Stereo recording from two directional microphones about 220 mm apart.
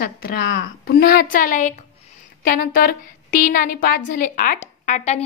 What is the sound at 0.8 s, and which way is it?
A woman's voice, 45° left (ahead or behind).